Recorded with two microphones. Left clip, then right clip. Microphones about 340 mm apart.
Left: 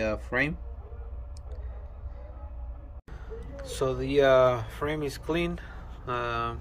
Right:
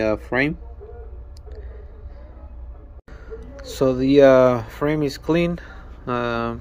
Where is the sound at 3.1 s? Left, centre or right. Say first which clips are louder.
Right 5 dB; centre.